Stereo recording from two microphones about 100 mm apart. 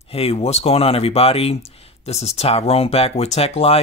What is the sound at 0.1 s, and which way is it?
Speech, 85° left.